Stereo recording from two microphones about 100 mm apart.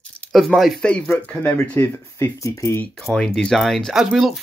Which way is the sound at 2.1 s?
30° left (ahead or behind).